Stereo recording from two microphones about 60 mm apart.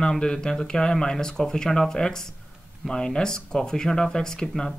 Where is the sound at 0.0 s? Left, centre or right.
Centre.